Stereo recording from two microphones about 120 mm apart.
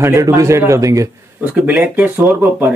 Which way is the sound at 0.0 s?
25° right (ahead or behind).